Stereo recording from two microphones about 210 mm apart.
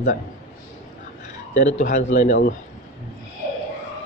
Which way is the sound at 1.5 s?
35° left (ahead or behind).